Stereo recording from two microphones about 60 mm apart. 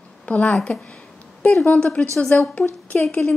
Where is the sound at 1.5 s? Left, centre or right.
Centre.